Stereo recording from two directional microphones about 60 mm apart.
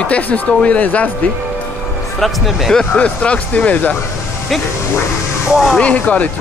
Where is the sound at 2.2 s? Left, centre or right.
Centre.